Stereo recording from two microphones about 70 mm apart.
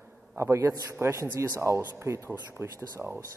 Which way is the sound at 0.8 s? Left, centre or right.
Right.